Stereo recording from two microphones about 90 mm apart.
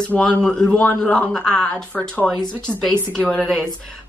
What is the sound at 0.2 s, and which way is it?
A man's voice, 10° left (ahead or behind).